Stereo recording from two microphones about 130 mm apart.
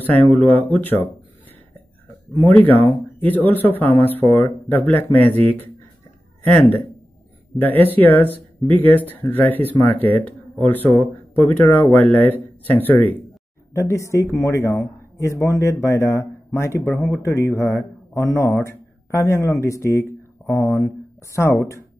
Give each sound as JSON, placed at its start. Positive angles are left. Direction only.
{"t": 0.0, "sound": "speech", "side_deg": 15}
{"t": 2.4, "sound": "speech", "side_deg": 15}
{"t": 13.7, "sound": "speech", "side_deg": 25}